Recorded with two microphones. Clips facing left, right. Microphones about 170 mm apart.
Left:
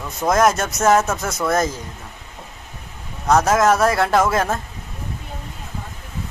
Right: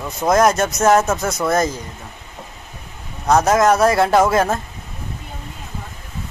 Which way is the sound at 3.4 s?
Centre (ahead or behind).